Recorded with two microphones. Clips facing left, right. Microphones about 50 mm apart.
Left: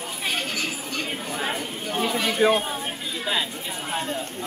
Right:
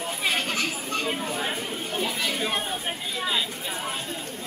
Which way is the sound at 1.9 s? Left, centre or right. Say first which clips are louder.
Left 4 dB; left.